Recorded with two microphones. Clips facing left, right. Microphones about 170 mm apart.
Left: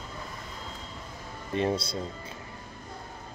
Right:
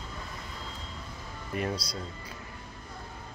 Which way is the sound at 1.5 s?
25° left (ahead or behind).